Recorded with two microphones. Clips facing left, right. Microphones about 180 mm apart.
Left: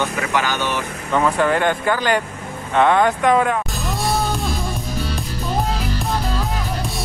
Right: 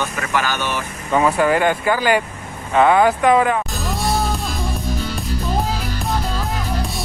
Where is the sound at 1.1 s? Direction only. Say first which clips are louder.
Right 2 dB; 10° right (ahead or behind).